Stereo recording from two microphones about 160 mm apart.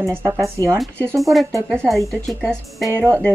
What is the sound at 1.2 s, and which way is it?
A woman's voice, centre (ahead or behind).